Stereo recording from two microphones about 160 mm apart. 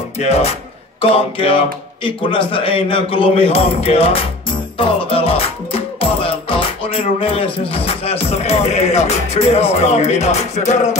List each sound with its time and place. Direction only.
0.2 s music: 40° left (ahead or behind)